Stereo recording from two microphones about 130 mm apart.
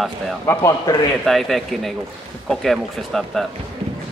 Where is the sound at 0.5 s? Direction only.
25° left (ahead or behind).